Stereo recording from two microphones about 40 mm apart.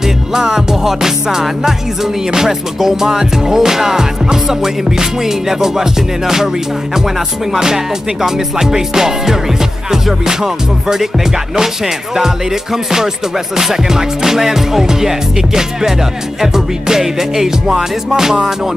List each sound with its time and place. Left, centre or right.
0.3 s music: centre
7.5 s music: centre